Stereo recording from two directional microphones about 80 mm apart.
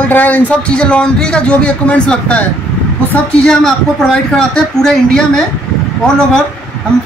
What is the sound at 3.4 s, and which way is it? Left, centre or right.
A man's voice, centre.